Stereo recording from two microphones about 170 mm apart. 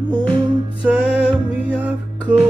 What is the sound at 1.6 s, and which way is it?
Music, 10° right (ahead or behind).